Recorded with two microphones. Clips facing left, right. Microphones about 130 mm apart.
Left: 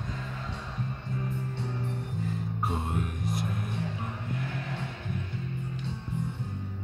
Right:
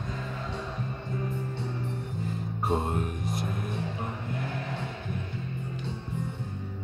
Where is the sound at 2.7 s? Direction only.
30° right (ahead or behind).